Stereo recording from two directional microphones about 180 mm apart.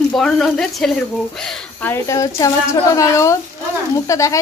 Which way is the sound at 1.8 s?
15° left (ahead or behind).